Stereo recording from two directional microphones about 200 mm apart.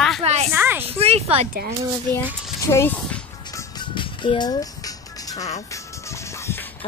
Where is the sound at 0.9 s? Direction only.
30° right (ahead or behind).